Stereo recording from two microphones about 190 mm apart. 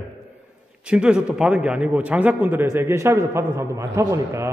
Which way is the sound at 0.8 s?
5° right (ahead or behind).